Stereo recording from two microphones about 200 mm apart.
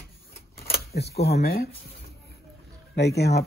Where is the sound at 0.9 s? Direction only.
55° left (ahead or behind).